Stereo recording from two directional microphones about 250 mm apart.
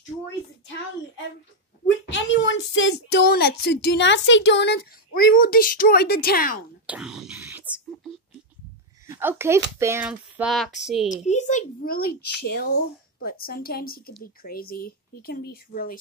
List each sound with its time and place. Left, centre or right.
2.0 s a child's voice: left
6.9 s speech: centre
11.2 s a child's voice: left